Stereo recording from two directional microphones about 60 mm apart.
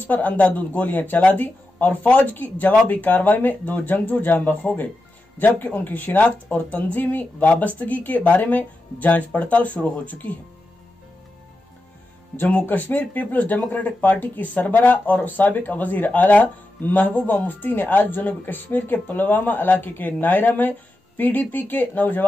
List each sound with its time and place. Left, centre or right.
0.0 s speech: left
12.4 s speech: left